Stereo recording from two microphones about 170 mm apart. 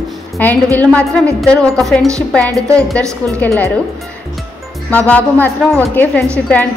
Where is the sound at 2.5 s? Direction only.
20° right (ahead or behind).